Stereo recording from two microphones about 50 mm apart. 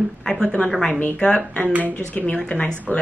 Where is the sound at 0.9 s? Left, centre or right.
Left.